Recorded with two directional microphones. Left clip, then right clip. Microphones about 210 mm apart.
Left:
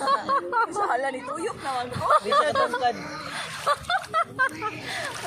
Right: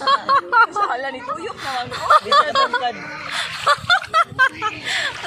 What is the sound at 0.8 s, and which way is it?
A woman's voice, 55° left (ahead or behind).